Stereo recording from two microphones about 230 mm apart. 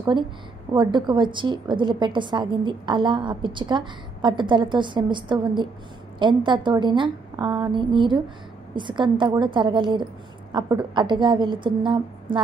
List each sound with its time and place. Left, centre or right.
0.7 s a woman's voice: centre